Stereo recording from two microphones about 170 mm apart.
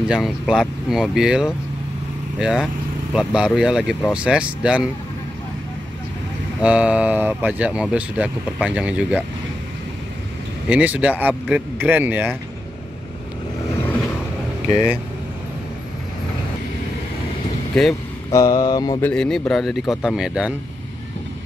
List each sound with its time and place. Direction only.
0.1 s a man's voice: 5° right (ahead or behind)
6.6 s speech: 5° right (ahead or behind)
10.7 s speech: 10° right (ahead or behind)
18.3 s mantra: 20° left (ahead or behind)
19.0 s a man's voice: 5° left (ahead or behind)